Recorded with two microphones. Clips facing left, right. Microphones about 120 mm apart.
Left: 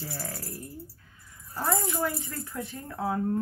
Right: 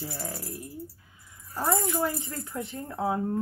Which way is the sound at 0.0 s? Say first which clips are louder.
Right 2 dB; 20° right (ahead or behind).